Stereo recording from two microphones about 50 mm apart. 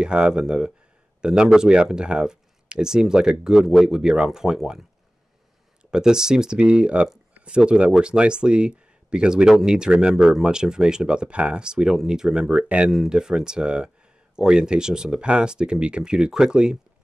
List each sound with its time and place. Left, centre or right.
0.0 s speech: centre
5.9 s speech: centre